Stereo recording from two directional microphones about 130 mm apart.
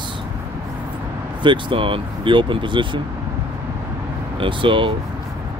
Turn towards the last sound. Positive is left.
turn(degrees=-40)  # may be behind; listen again after turning